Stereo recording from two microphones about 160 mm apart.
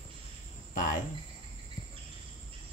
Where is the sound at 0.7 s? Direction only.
55° left (ahead or behind).